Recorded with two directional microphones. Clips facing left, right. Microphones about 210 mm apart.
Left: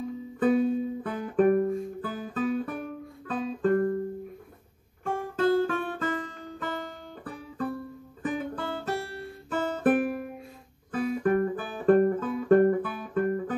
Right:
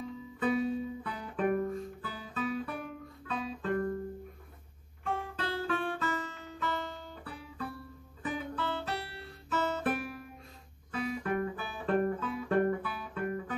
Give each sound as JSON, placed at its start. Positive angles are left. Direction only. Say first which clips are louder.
{"t": 0.4, "sound": "music", "louder": "left 7 dB", "side_deg": 50}
{"t": 5.0, "sound": "guitar", "louder": "left 10 dB", "side_deg": 50}